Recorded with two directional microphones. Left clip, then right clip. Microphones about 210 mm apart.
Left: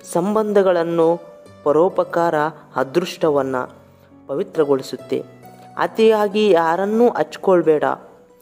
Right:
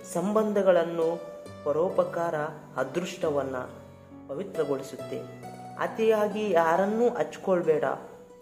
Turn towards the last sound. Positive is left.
turn(degrees=45)  # may be behind; listen again after turning